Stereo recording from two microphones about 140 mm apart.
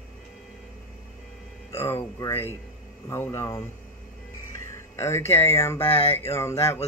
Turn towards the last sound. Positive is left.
turn(degrees=20)  # may be behind; listen again after turning